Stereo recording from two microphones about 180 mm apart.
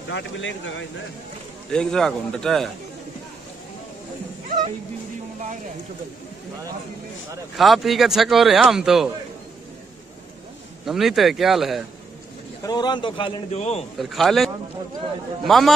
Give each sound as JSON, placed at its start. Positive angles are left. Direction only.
{"t": 0.1, "sound": "speech", "side_deg": 90}
{"t": 1.7, "sound": "speech", "side_deg": 5}
{"t": 7.5, "sound": "speech", "side_deg": 0}
{"t": 10.9, "sound": "speech", "side_deg": 0}
{"t": 12.6, "sound": "a man's voice", "side_deg": 25}
{"t": 13.9, "sound": "speech", "side_deg": 0}